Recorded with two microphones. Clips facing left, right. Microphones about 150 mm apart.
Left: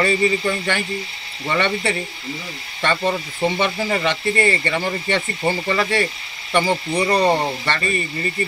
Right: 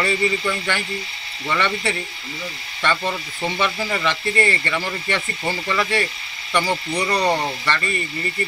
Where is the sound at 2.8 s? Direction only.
25° left (ahead or behind).